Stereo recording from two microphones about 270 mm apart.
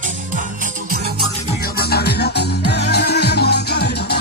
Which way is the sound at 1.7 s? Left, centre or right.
Left.